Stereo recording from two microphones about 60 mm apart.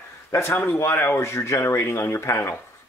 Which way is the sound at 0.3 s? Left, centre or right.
Left.